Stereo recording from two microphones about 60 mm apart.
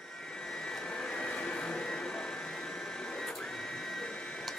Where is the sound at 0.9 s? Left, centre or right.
Centre.